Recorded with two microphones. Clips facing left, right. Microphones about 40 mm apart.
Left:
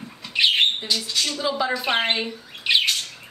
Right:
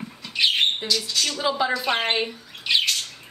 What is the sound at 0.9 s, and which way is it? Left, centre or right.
Speech, left.